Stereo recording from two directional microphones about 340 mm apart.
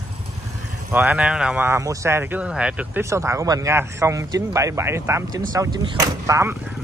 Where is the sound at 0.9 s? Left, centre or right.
Centre.